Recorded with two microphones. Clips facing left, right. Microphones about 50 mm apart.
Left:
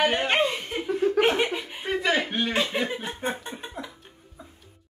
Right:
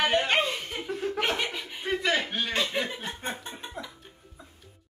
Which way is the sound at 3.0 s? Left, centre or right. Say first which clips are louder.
Left 4 dB; centre.